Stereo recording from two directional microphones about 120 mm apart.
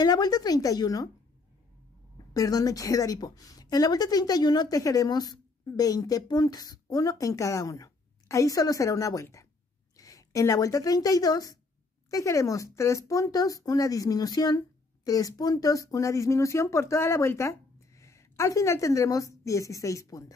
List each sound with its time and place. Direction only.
0.0 s a woman's voice: 35° left (ahead or behind)
2.3 s a woman's voice: 30° left (ahead or behind)